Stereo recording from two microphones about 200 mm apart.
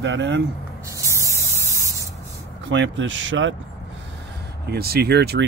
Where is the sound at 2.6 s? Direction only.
65° right (ahead or behind).